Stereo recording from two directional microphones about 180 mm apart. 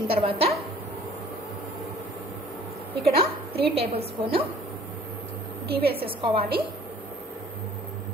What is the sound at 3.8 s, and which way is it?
Speech, 35° right (ahead or behind).